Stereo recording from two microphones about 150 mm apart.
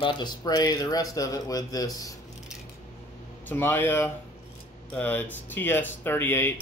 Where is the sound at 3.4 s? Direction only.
15° left (ahead or behind).